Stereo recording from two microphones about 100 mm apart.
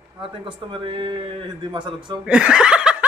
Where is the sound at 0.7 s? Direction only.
55° right (ahead or behind).